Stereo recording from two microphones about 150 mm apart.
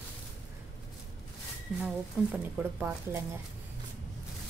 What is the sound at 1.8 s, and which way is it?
Speech, 10° right (ahead or behind).